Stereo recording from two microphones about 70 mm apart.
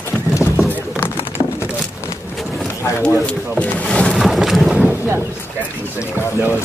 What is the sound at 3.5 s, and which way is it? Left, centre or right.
Speech, centre.